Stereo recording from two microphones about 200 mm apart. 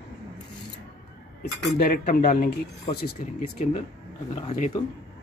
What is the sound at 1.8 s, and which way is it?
Speech, 45° left (ahead or behind).